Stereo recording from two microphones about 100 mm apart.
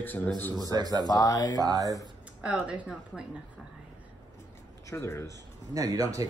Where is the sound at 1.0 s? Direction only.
40° left (ahead or behind).